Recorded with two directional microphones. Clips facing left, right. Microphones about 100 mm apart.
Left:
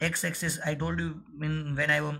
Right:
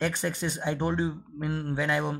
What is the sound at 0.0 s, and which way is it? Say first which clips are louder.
A man's voice: right 3 dB; 20° right (ahead or behind).